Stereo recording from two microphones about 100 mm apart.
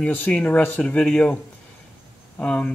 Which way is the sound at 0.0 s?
20° left (ahead or behind).